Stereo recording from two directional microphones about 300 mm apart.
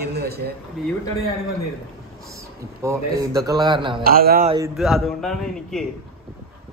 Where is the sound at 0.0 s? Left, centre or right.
Right.